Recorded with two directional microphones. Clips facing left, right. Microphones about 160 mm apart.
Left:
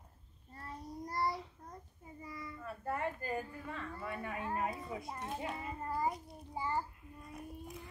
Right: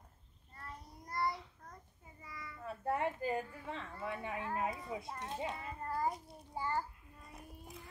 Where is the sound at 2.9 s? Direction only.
20° right (ahead or behind).